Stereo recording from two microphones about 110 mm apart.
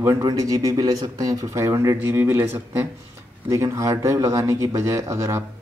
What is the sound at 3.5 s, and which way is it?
Speech, 30° right (ahead or behind).